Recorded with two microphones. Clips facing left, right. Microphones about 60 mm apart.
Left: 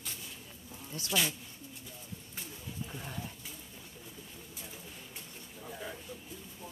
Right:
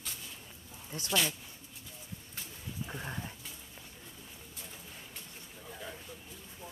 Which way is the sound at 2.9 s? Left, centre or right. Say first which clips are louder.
Right 2 dB; right.